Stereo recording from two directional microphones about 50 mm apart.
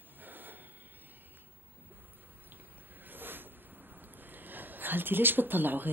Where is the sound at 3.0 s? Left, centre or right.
Right.